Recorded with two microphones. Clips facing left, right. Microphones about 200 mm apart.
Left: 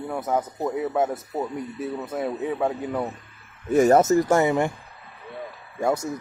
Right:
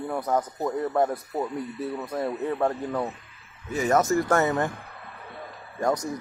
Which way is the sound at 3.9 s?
20° left (ahead or behind).